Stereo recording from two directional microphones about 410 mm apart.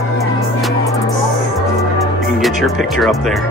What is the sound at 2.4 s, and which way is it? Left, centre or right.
Speech, centre.